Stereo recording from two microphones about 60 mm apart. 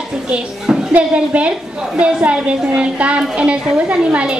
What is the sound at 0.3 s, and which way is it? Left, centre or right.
Speech, centre.